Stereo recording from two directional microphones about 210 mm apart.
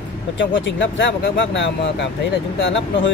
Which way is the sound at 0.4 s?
60° left (ahead or behind).